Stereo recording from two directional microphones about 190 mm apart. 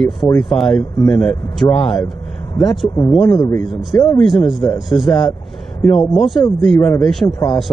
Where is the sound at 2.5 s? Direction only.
20° left (ahead or behind).